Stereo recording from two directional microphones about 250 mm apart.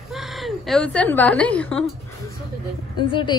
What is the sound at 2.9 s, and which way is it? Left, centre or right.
Speech, centre.